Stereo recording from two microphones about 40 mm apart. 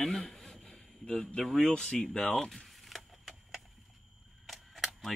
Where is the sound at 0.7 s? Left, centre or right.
Left.